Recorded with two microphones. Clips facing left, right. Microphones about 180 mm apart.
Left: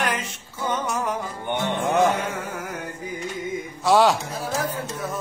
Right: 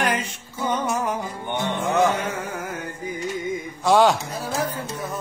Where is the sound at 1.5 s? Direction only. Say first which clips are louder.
Left 1 dB; 15° left (ahead or behind).